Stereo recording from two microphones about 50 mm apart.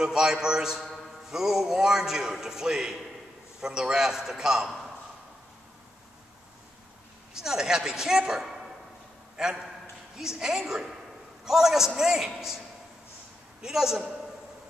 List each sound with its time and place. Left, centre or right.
0.0 s a man's voice: centre
4.6 s a sound: centre
7.3 s a man's voice: centre